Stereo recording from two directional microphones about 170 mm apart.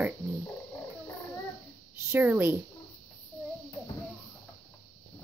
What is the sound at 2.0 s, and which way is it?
Speech, 10° right (ahead or behind).